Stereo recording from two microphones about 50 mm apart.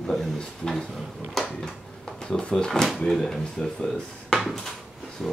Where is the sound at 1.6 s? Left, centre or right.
Centre.